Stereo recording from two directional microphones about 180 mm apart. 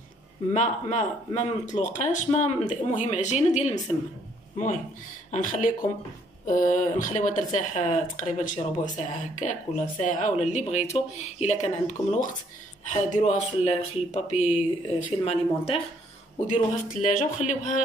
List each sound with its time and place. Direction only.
0.5 s speech: 40° left (ahead or behind)
5.3 s speech: 45° left (ahead or behind)
16.4 s speech: 45° left (ahead or behind)